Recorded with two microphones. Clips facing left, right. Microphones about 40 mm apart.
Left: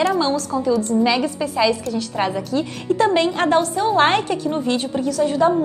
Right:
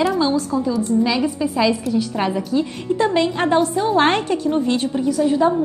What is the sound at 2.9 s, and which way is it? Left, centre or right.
Speech, left.